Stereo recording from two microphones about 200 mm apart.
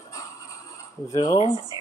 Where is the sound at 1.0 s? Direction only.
15° left (ahead or behind).